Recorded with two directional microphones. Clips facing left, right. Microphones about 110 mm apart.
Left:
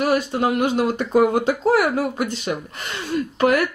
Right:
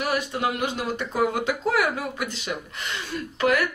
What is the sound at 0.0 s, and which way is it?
Speech, 40° left (ahead or behind).